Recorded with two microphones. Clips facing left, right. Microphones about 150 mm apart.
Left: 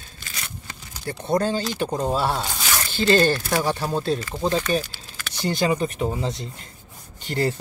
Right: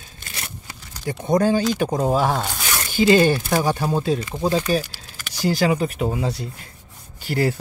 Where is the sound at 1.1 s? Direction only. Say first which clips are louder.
Right 4 dB; 15° right (ahead or behind).